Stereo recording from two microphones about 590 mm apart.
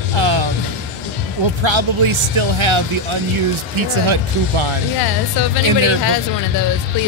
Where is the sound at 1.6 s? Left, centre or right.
Right.